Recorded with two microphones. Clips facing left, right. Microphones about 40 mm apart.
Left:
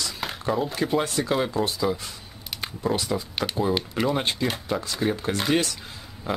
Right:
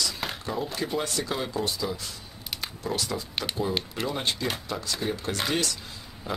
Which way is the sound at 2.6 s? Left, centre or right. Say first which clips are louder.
Left 5 dB; left.